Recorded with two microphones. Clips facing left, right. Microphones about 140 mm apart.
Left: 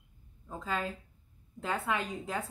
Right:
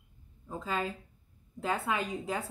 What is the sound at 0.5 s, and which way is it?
Speech, 15° right (ahead or behind).